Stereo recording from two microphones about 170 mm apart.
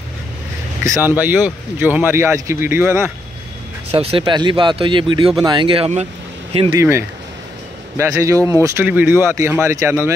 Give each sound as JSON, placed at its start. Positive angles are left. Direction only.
{"t": 1.1, "sound": "speech", "side_deg": -10}
{"t": 3.9, "sound": "speech", "side_deg": -35}
{"t": 6.8, "sound": "speech", "side_deg": -15}